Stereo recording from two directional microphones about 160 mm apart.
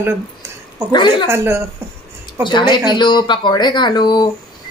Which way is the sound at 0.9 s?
30° left (ahead or behind).